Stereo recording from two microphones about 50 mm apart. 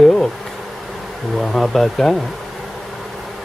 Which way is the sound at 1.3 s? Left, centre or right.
Centre.